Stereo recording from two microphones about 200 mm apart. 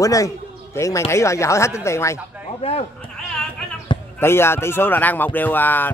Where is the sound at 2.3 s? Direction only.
10° right (ahead or behind).